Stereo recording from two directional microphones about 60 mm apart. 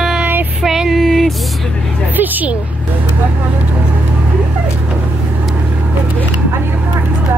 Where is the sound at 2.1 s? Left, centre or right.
Right.